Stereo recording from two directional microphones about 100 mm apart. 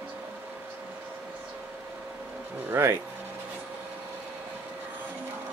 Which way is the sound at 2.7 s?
25° right (ahead or behind).